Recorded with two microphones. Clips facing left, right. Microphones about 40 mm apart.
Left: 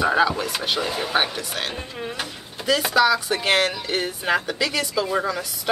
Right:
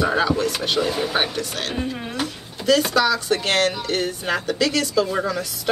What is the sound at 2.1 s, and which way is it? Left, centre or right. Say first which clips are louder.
A woman's voice: right 4 dB; centre.